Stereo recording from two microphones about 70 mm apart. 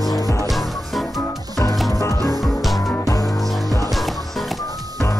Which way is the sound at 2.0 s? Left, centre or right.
Left.